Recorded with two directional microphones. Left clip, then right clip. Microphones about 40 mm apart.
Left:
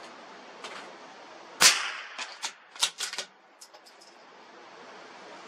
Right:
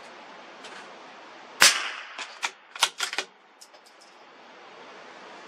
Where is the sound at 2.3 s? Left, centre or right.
Right.